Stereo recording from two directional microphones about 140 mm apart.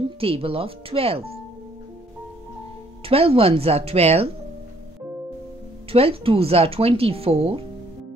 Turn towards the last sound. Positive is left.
turn(degrees=-45)  # may be behind; listen again after turning